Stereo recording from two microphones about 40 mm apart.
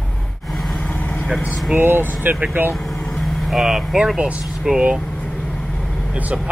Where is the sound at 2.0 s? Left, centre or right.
Right.